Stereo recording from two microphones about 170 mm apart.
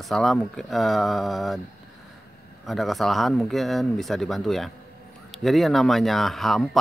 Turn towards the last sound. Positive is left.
turn(degrees=0)  # may be behind; listen again after turning